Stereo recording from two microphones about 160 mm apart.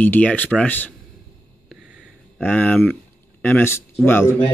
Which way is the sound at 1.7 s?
5° right (ahead or behind).